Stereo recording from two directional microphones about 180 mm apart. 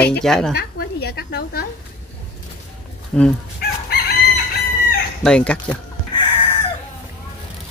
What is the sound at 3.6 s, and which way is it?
Chicken, 60° left (ahead or behind).